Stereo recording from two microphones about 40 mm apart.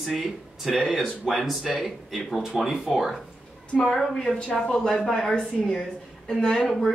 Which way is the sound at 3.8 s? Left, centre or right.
Centre.